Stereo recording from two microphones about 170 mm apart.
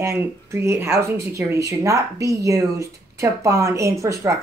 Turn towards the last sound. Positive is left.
turn(degrees=-15)  # may be behind; listen again after turning